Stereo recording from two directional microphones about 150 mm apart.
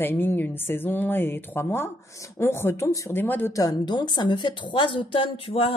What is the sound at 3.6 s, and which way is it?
A woman's voice, 30° left (ahead or behind).